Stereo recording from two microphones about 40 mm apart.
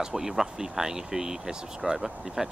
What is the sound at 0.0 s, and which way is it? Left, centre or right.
Speech, centre.